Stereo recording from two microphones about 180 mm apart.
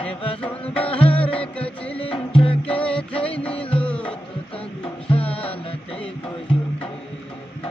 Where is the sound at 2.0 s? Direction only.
30° left (ahead or behind).